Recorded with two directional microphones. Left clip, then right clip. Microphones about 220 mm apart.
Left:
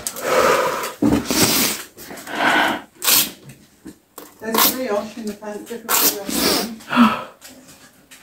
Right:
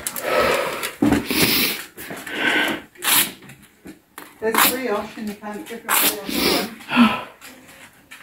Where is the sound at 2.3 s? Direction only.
15° left (ahead or behind).